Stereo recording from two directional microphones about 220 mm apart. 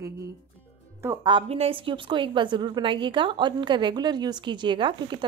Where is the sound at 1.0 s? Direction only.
15° right (ahead or behind).